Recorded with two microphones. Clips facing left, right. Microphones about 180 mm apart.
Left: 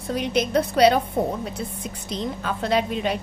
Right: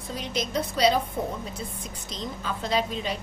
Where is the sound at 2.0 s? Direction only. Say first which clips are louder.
Left 6 dB; 60° left (ahead or behind).